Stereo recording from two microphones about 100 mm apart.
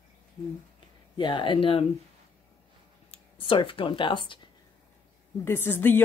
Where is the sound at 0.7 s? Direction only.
50° left (ahead or behind).